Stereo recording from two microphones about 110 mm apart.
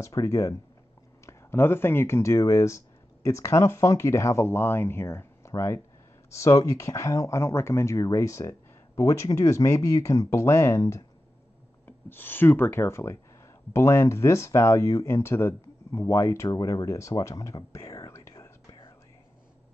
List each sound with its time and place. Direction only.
0.0 s speech: 25° left (ahead or behind)
12.1 s speech: 20° left (ahead or behind)